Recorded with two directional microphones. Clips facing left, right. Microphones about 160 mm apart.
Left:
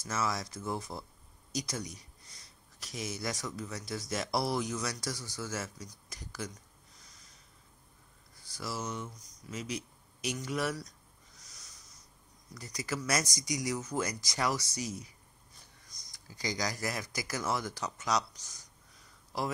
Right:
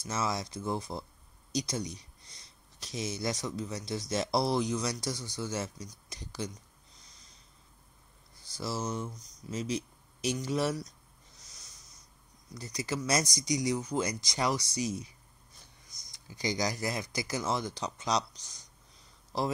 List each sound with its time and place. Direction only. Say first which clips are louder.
0.0 s speech: right 1 dB; 20° right (ahead or behind)
8.5 s speech: right 3 dB; 25° right (ahead or behind)
12.5 s speech: right 3 dB; 25° right (ahead or behind)
16.1 s speech: right 4 dB; 25° right (ahead or behind)